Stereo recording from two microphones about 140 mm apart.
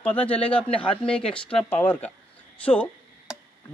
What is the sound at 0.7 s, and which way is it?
Speech, 40° left (ahead or behind).